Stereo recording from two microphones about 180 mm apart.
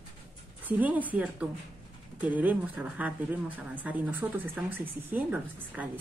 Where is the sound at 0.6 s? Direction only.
10° right (ahead or behind).